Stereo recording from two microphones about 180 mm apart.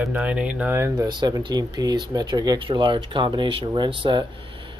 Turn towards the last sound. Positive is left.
turn(degrees=-30)  # may be behind; listen again after turning